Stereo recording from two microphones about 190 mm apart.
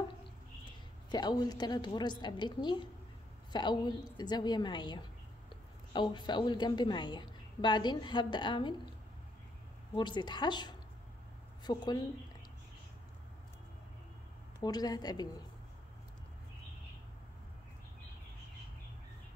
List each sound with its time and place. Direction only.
0.7 s a woman's voice: 25° left (ahead or behind)
9.9 s a woman's voice: 25° left (ahead or behind)
14.6 s a woman's voice: 20° left (ahead or behind)